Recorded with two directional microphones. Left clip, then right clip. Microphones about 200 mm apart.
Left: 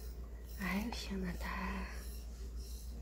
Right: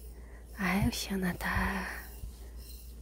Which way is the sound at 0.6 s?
35° right (ahead or behind).